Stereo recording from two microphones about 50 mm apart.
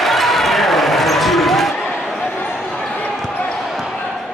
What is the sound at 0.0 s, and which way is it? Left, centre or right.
Basketball bounce, centre.